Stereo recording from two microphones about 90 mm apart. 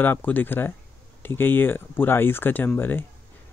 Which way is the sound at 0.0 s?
20° left (ahead or behind).